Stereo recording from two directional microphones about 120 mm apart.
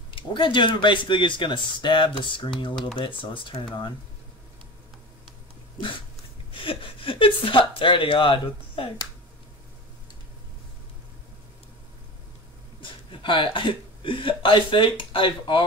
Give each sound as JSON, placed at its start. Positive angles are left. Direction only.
{"t": 0.1, "sound": "speech", "side_deg": 45}
{"t": 6.5, "sound": "speech", "side_deg": 45}
{"t": 12.8, "sound": "speech", "side_deg": 45}